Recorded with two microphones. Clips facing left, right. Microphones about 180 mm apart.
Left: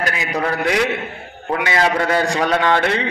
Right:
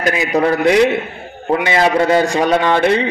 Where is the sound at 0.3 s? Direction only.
30° right (ahead or behind).